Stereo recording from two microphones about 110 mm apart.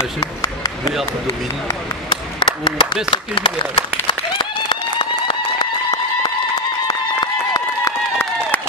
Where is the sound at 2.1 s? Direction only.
50° left (ahead or behind).